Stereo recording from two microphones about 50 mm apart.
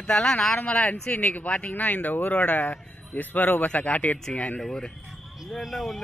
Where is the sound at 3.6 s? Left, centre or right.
Left.